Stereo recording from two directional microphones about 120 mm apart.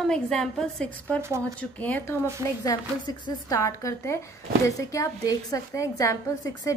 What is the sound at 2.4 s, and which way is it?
Speech, 25° right (ahead or behind).